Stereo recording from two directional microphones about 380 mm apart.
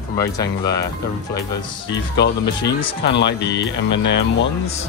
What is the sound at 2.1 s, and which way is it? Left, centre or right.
Speech, left.